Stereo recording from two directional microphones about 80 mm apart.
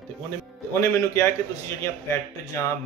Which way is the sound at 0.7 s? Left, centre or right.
Left.